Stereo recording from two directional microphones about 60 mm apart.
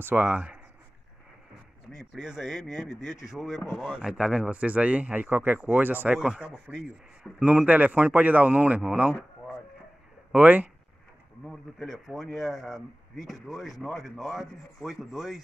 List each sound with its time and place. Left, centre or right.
0.0 s speech: right
2.0 s speech: centre; by 6.1 s right
6.1 s speech: centre
7.4 s speech: right
10.3 s speech: right
11.4 s speech: centre